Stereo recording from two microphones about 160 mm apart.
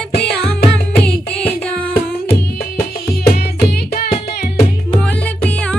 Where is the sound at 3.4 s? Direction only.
80° left.